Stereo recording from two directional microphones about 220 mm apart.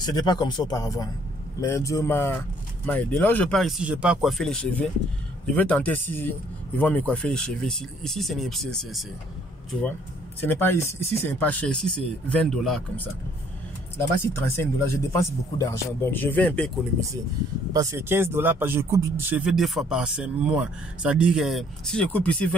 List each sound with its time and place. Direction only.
0.0 s speech: 15° left (ahead or behind)
14.3 s speech: 10° left (ahead or behind)
17.7 s speech: 10° right (ahead or behind); by 22.5 s 5° left (ahead or behind)